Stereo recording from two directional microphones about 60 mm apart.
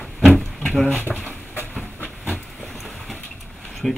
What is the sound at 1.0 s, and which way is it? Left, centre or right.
Train, left.